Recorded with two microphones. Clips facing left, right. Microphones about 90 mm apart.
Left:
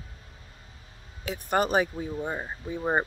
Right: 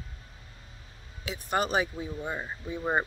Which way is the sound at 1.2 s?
45° left (ahead or behind).